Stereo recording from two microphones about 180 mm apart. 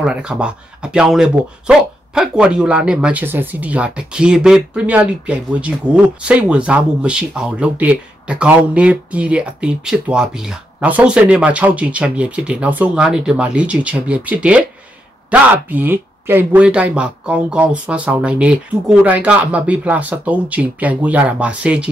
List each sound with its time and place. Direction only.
0.0 s speech: 5° right (ahead or behind)